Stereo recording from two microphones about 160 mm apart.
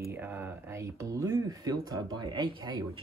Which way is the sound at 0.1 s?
15° right (ahead or behind).